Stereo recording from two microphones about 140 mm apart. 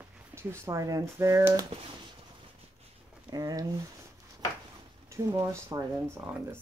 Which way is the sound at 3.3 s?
25° right (ahead or behind).